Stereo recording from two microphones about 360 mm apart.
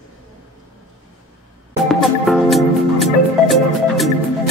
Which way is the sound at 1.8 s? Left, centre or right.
Centre.